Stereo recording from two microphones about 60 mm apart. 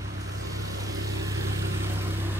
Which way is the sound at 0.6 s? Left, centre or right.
Right.